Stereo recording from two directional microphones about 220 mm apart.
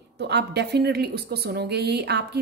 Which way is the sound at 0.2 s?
50° right (ahead or behind).